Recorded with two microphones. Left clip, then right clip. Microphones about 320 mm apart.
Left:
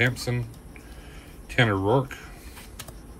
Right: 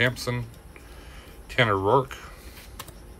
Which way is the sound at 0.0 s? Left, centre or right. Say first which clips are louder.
Right 1 dB; centre.